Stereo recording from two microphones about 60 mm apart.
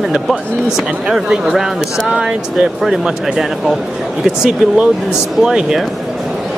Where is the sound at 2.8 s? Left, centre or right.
Centre.